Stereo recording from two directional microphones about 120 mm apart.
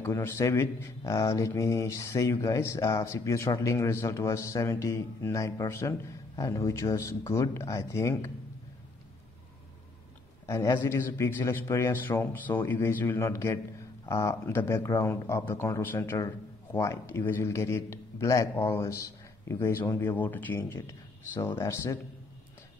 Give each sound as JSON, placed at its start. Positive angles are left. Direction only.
{"t": 0.0, "sound": "speech", "side_deg": 20}
{"t": 10.4, "sound": "speech", "side_deg": 25}